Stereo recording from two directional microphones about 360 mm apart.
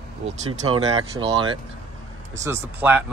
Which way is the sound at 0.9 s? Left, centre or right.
Centre.